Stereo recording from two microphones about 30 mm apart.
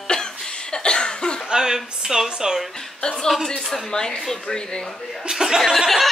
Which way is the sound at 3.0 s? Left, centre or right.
Left.